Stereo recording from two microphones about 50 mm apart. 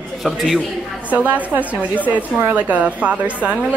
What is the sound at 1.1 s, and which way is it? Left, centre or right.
A woman's voice, right.